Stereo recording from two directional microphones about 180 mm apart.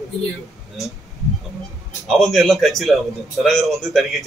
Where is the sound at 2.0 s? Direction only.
Centre (ahead or behind).